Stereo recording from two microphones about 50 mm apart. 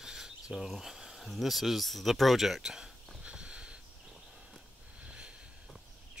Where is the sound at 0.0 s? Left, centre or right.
Centre.